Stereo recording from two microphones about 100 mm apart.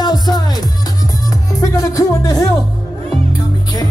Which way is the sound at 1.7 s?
35° left (ahead or behind).